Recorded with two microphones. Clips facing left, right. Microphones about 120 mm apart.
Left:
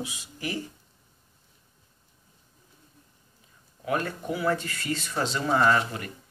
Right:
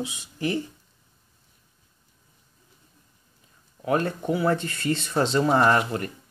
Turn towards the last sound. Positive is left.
turn(degrees=-40)  # may be behind; listen again after turning